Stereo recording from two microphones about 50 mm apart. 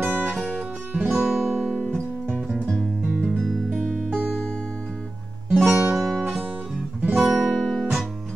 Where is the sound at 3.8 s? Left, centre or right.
Centre.